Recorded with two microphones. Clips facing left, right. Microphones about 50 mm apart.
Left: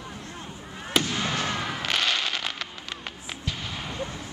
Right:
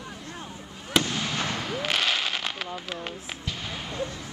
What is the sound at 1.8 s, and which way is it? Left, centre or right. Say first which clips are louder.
Fireworks: right 1 dB; centre.